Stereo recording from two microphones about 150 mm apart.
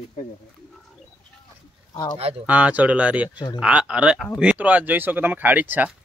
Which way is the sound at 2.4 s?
10° right (ahead or behind).